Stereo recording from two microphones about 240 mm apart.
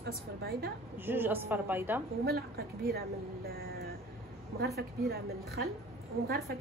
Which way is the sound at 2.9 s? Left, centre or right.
Right.